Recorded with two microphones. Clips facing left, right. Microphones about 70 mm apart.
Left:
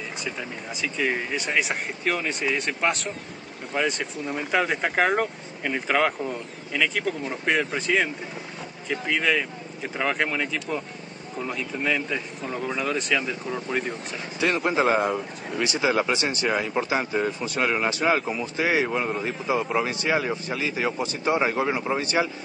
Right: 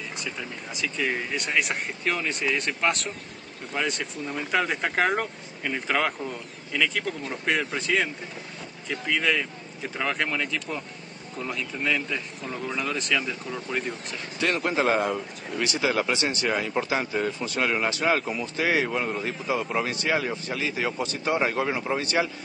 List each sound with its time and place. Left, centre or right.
0.2 s speech: centre; by 22.3 s left